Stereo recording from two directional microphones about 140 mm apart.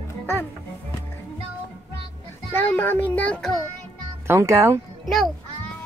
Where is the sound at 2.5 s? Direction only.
15° left (ahead or behind).